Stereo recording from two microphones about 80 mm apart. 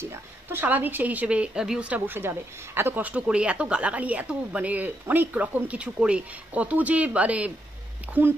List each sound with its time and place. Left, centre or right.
0.0 s a woman's voice: right
8.1 s a woman's voice: right